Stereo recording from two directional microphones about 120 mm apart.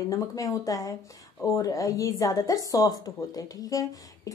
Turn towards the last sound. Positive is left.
turn(degrees=30)  # may be behind; listen again after turning